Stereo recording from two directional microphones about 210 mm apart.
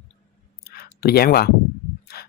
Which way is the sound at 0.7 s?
45° left (ahead or behind).